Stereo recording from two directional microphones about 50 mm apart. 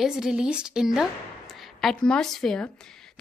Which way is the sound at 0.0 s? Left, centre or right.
Centre.